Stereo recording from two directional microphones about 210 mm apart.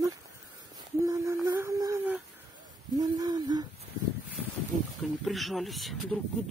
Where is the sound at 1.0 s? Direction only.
15° right (ahead or behind).